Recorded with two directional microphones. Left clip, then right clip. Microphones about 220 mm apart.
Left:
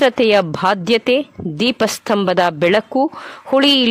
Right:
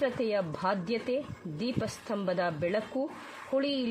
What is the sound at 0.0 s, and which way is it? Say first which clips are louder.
A woman's voice: left 17 dB; 45° left (ahead or behind).